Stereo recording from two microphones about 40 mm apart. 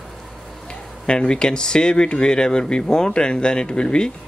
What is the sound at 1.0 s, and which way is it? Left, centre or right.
Speech, left.